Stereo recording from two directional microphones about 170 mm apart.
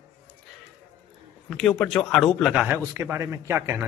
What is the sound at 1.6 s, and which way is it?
A man's voice, centre (ahead or behind).